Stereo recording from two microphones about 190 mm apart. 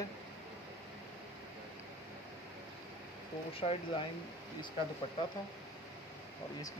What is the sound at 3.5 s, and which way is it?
Speech, 30° left (ahead or behind).